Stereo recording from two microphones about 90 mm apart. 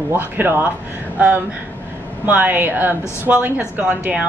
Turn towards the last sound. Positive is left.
turn(degrees=-15)  # may be behind; listen again after turning